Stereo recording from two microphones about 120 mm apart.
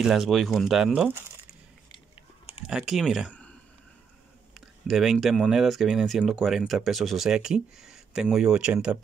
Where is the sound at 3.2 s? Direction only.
10° left (ahead or behind).